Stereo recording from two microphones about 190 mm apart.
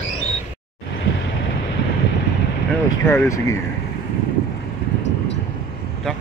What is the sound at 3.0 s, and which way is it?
Speech, 15° left (ahead or behind).